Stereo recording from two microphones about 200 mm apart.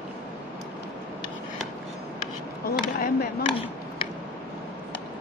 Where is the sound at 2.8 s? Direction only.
50° left (ahead or behind).